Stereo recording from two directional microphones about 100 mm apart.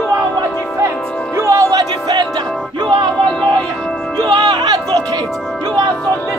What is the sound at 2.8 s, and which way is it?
Music, 55° right (ahead or behind).